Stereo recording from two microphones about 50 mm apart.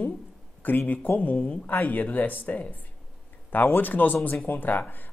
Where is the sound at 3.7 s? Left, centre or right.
Left.